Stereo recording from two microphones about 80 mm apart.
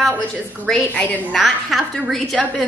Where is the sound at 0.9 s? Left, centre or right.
Centre.